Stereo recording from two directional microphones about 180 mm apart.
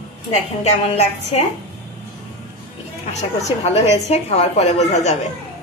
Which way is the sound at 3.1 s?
40° left (ahead or behind).